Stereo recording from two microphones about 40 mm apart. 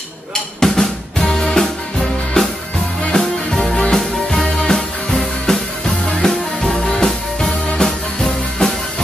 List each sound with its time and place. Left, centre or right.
0.6 s drum: centre
1.2 s music: centre
3.7 s music: centre